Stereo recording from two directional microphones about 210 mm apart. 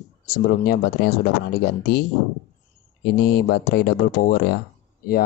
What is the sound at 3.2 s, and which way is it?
Speech, 50° left (ahead or behind).